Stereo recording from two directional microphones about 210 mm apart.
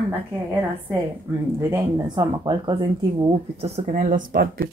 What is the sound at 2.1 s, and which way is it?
Speech, 20° right (ahead or behind).